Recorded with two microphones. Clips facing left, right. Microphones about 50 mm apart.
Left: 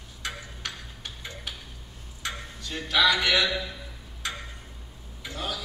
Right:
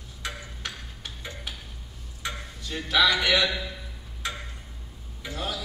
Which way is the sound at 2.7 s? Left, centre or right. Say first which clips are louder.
Even; centre.